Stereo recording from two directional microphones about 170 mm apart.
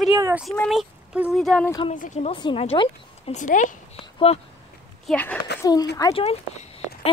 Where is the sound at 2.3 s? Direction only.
30° left (ahead or behind).